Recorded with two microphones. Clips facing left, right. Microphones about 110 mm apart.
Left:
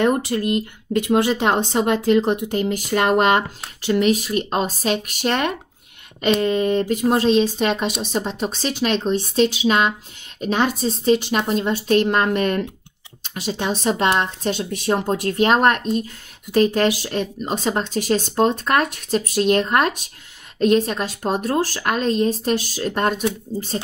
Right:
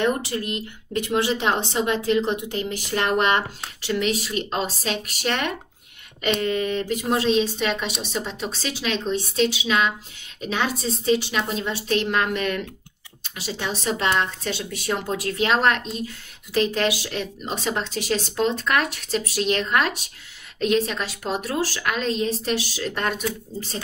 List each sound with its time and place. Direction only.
0.2 s a woman's voice: 45° left (ahead or behind)
8.4 s speech: 45° left (ahead or behind)